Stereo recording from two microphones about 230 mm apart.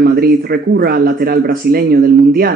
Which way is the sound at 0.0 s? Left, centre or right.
Right.